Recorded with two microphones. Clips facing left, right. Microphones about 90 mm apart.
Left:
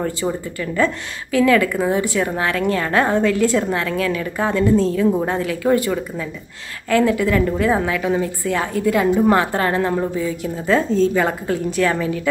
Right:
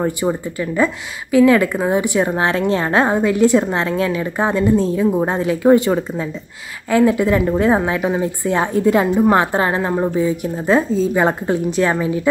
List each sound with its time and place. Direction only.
0.6 s a woman's voice: 20° right (ahead or behind)